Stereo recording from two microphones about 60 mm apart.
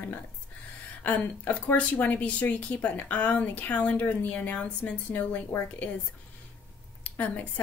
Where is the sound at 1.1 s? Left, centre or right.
Left.